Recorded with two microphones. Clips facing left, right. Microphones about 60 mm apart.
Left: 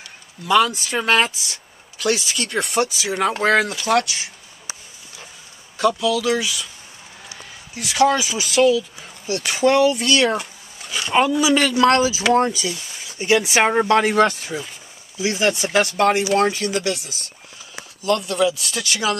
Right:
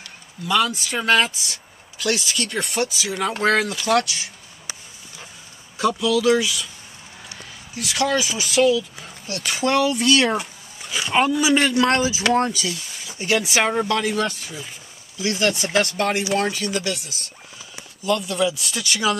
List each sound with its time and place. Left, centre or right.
0.5 s speech: centre
5.8 s speech: centre
13.7 s speech: left
14.0 s speech: left
15.1 s speech: centre